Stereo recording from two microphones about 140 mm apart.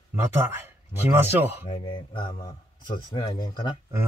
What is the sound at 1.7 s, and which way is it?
Speech, 35° left (ahead or behind).